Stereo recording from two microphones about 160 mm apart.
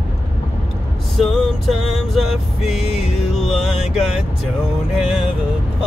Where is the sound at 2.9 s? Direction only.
40° left (ahead or behind).